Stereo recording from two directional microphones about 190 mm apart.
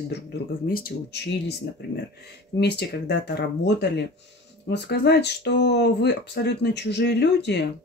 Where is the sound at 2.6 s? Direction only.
60° left (ahead or behind).